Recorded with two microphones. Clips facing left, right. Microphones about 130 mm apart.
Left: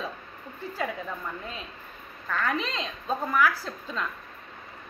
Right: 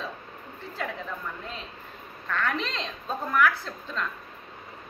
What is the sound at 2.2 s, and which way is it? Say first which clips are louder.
A woman's voice: even; 5° left (ahead or behind).